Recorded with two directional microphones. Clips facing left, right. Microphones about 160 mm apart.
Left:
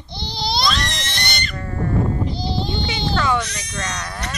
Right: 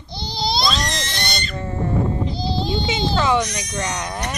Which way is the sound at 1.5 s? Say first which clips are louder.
Even; 20° right (ahead or behind).